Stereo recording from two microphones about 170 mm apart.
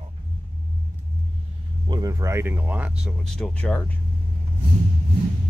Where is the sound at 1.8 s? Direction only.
25° right (ahead or behind); by 3.9 s 5° left (ahead or behind).